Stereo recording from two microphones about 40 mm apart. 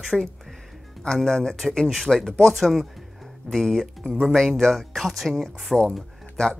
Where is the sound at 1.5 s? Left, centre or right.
Centre.